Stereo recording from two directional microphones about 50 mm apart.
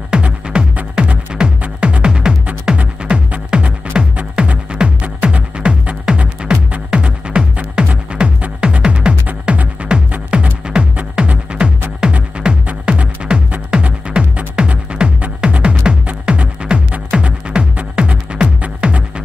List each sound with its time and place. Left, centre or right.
0.1 s music: centre